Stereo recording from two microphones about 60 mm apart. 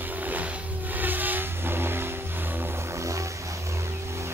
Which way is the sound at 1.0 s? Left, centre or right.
Right.